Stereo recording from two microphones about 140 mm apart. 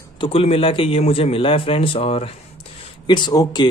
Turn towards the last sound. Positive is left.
turn(degrees=30)  # may be behind; listen again after turning